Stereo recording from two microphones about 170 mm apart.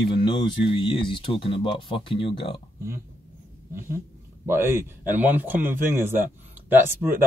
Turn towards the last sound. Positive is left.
turn(degrees=-10)  # may be behind; listen again after turning